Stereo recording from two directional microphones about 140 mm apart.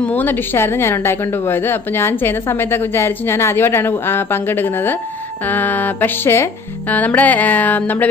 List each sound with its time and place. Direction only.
0.0 s a woman's voice: 10° left (ahead or behind)